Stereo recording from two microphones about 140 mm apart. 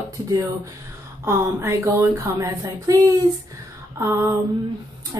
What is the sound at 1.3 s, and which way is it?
A woman's voice, 20° right (ahead or behind).